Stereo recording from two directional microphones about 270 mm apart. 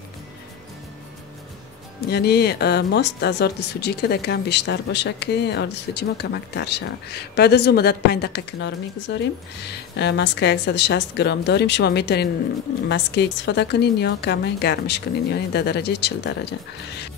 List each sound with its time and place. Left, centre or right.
2.0 s speech: left